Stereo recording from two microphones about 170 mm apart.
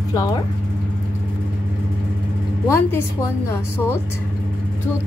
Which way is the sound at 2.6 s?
15° left (ahead or behind).